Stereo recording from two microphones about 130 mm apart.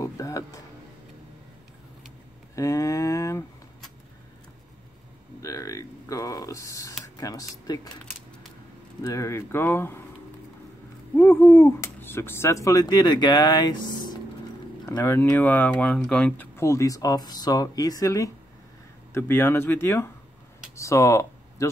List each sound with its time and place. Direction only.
0.0 s music: 25° left (ahead or behind)
2.5 s a sound: 25° left (ahead or behind)
5.4 s a sound: 25° left (ahead or behind)
7.2 s speech: 25° left (ahead or behind)
9.0 s speech: 25° left (ahead or behind)
11.1 s speech: 20° left (ahead or behind); by 14.1 s 35° left (ahead or behind)
15.0 s speech: 20° left (ahead or behind)
16.5 s speech: 25° left (ahead or behind)
20.7 s a sound: 25° left (ahead or behind)